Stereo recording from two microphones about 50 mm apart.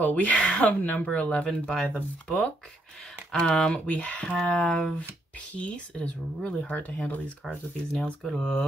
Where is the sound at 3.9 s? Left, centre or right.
Left.